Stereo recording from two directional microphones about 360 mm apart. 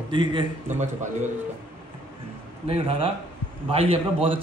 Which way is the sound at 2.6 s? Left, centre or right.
Centre.